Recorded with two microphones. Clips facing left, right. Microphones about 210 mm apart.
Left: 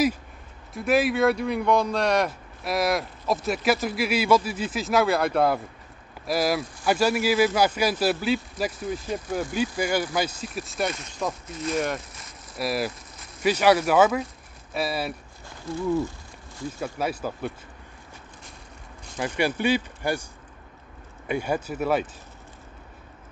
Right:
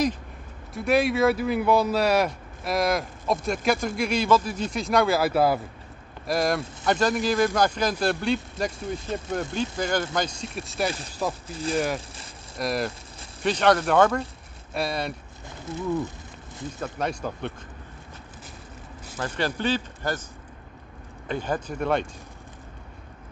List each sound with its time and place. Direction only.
0.7 s speech: centre (ahead or behind)
10.9 s speech: 30° right (ahead or behind)
11.7 s speech: centre (ahead or behind)
16.8 s speech: 5° left (ahead or behind)
19.1 s speech: 10° left (ahead or behind)
21.3 s speech: 10° left (ahead or behind)